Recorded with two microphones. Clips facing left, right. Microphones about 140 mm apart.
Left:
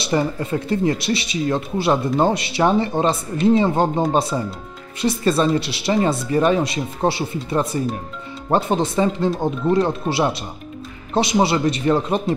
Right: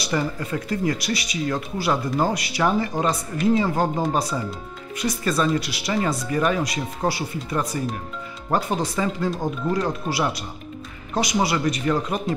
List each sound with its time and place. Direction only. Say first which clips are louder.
0.0 s speech: left 4 dB; 25° left (ahead or behind)